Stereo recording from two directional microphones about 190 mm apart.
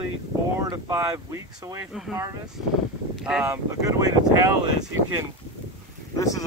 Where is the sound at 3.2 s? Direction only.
10° right (ahead or behind).